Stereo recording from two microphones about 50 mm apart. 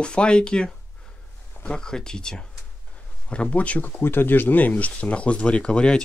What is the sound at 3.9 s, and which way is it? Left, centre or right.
Speech, left.